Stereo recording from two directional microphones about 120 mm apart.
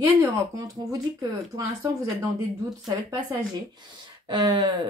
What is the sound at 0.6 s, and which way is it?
Speech, 30° right (ahead or behind).